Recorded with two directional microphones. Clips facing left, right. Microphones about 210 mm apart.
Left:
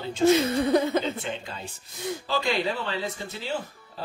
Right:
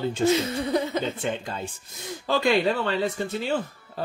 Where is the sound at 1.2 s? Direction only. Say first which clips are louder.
Right 5 dB; 45° right (ahead or behind).